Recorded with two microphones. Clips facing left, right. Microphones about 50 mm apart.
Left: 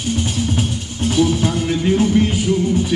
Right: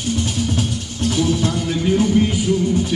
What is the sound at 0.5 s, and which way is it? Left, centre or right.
Music, centre.